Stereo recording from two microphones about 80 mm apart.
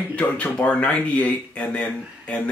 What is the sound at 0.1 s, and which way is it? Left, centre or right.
Speech, centre.